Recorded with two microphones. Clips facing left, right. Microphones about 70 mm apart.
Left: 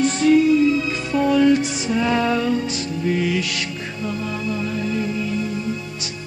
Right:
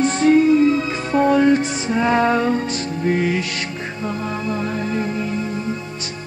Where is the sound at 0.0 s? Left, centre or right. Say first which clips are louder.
Right 1 dB; right.